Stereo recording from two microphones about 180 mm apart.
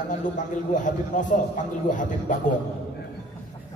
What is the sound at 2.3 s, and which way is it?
Speech, 45° left (ahead or behind).